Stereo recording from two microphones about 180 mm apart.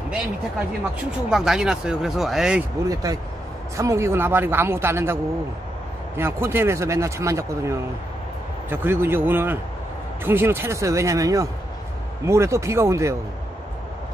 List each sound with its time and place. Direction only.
1.1 s speech: 5° right (ahead or behind)
2.9 s speech: 20° right (ahead or behind)